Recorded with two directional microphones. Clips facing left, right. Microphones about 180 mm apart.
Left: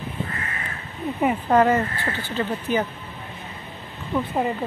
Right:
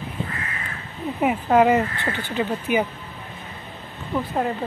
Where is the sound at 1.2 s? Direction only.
5° right (ahead or behind).